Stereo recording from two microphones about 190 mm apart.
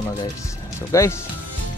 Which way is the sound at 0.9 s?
15° left (ahead or behind).